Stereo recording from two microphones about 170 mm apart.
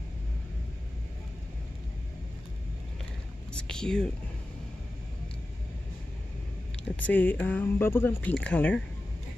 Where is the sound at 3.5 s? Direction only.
5° left (ahead or behind).